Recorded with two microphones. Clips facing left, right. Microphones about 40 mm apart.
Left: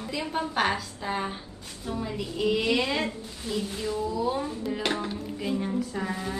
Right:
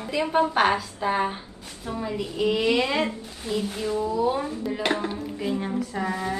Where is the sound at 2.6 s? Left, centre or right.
Right.